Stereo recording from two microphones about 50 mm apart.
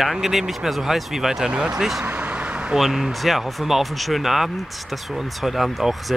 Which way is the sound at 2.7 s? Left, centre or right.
Centre.